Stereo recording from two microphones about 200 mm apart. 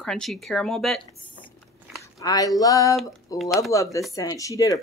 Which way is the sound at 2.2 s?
15° left (ahead or behind).